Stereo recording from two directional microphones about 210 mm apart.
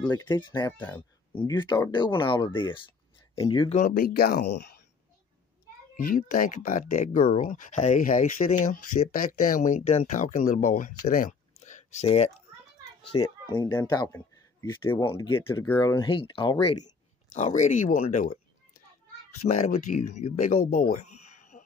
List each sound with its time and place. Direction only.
0.1 s speech: 20° left (ahead or behind)
0.7 s speech: 10° left (ahead or behind)
1.3 s speech: 20° left (ahead or behind)
3.8 s speech: 45° left (ahead or behind)
5.9 s speech: 40° left (ahead or behind)
11.1 s a sound: 35° left (ahead or behind)
13.0 s speech: 25° left (ahead or behind)
15.4 s speech: 10° left (ahead or behind)
17.3 s speech: 35° left (ahead or behind)
19.4 s speech: 35° left (ahead or behind)
20.7 s a sound: 45° left (ahead or behind)